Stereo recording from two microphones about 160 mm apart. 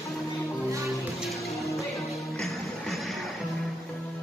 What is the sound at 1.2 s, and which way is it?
Music, centre (ahead or behind).